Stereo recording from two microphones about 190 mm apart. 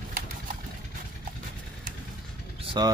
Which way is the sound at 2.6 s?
25° right (ahead or behind).